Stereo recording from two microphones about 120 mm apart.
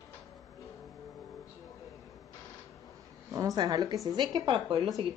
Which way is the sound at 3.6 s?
35° right (ahead or behind).